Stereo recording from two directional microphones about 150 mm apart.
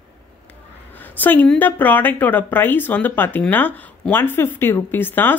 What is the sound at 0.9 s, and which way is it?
Speech, 10° left (ahead or behind).